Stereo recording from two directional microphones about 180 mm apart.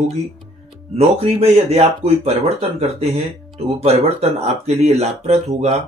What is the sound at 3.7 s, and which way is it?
Speech, 35° right (ahead or behind).